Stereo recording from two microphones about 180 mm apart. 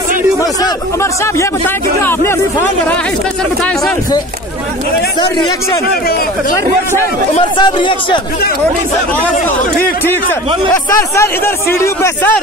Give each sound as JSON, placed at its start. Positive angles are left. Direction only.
{"t": 2.0, "sound": "speech", "side_deg": 15}
{"t": 7.5, "sound": "speech", "side_deg": 25}
{"t": 10.0, "sound": "speech", "side_deg": 10}